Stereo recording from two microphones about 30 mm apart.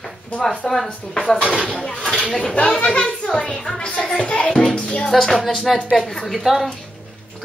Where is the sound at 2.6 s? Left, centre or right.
Left.